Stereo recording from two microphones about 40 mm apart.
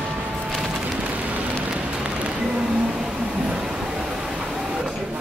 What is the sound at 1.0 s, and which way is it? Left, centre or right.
Rain on surface, right.